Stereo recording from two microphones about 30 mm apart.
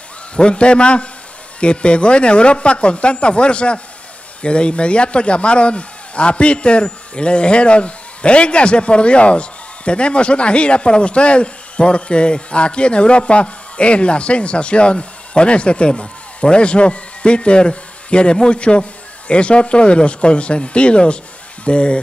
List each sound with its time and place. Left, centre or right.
0.4 s speech: left